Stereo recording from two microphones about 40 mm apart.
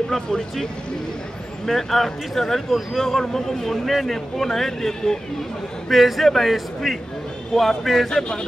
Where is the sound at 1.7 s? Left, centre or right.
Centre.